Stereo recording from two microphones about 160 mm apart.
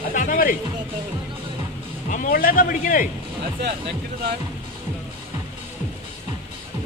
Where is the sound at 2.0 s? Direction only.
50° left (ahead or behind).